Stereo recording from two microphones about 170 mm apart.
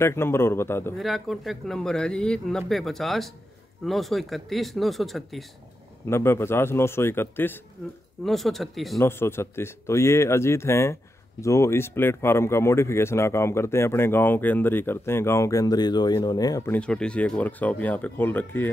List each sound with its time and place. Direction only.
0.0 s speech: 15° left (ahead or behind)
0.9 s speech: centre (ahead or behind)
6.0 s speech: 15° left (ahead or behind)
8.2 s speech: centre (ahead or behind)
8.9 s speech: 15° left (ahead or behind)